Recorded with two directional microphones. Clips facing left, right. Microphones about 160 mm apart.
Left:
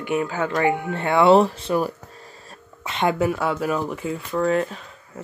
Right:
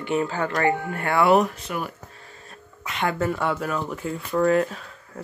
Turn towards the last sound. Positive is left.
turn(degrees=0)  # may be behind; listen again after turning